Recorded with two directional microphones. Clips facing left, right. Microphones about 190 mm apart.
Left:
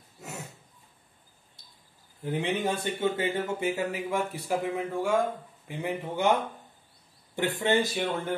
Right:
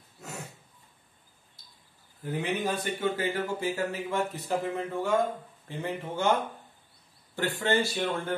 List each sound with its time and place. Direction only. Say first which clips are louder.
2.2 s speech: left 2 dB; 25° left (ahead or behind)
7.3 s speech: left 2 dB; 20° left (ahead or behind)